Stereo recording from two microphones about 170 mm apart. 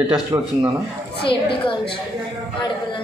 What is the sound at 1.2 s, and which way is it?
Speech, 30° left (ahead or behind).